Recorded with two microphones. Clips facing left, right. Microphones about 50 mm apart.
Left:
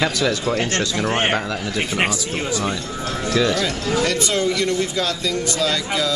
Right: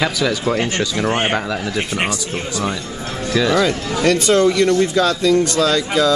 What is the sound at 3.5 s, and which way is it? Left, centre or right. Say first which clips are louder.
Speech: right 4 dB; centre.